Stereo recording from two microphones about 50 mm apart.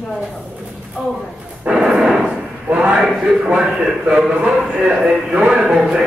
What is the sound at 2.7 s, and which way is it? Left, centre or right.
Speech, centre.